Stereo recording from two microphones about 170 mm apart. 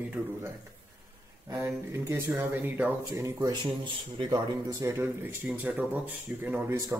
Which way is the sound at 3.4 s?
25° right (ahead or behind).